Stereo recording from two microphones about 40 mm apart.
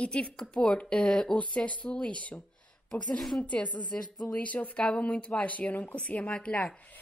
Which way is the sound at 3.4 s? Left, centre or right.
Left.